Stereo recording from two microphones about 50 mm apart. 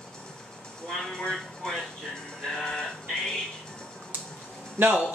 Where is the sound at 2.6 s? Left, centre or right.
Centre.